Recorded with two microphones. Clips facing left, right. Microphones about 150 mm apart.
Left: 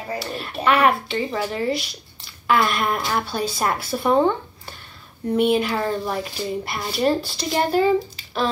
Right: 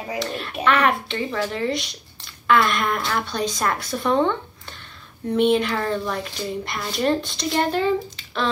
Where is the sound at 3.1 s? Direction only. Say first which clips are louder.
Left 1 dB; 5° left (ahead or behind).